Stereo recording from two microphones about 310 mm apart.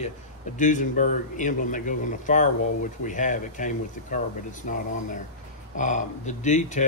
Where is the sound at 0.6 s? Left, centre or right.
Left.